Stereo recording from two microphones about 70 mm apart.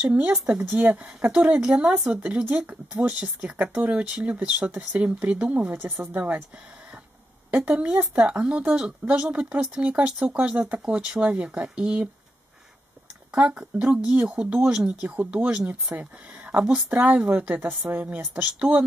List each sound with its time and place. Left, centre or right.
0.1 s speech: centre
7.7 s speech: centre
13.3 s speech: centre